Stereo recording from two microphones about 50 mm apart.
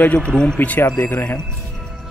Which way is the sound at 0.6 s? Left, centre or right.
Left.